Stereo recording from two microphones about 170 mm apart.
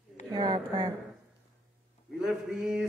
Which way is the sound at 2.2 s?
Centre (ahead or behind).